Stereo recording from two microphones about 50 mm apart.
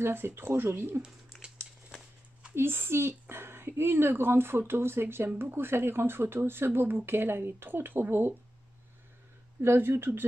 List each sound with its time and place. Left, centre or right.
0.0 s speech: right
1.4 s a sound: centre
2.5 s speech: right
9.6 s speech: right